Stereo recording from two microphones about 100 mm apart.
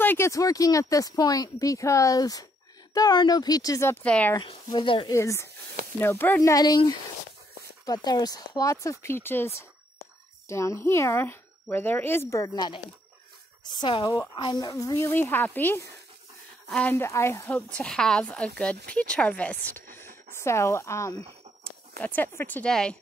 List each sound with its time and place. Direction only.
0.0 s a sound: 20° left (ahead or behind)
0.3 s speech: 35° left (ahead or behind)
4.0 s a woman's voice: 10° left (ahead or behind)
4.4 s speech: 60° left (ahead or behind)
5.0 s speech: 30° left (ahead or behind)
6.4 s speech: 35° left (ahead or behind)
7.8 s speech: 40° left (ahead or behind)
15.0 s speech: 20° left (ahead or behind)
17.7 s a woman's voice: 5° left (ahead or behind); by 21.2 s 30° left (ahead or behind)
21.6 s speech: 15° left (ahead or behind)
22.7 s a woman's voice: 5° left (ahead or behind)